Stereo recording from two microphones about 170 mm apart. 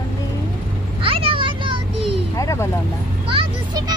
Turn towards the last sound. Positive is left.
turn(degrees=-25)  # may be behind; listen again after turning